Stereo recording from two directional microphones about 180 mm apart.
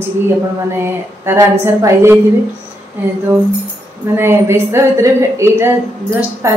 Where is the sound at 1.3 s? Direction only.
15° right (ahead or behind).